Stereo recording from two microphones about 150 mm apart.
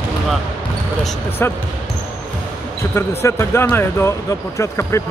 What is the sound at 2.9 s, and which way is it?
Speech, 15° left (ahead or behind).